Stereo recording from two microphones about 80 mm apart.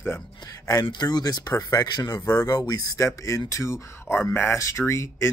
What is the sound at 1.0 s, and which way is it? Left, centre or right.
Speech, left.